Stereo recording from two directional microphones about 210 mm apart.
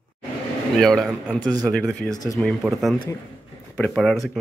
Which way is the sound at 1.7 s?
Centre (ahead or behind).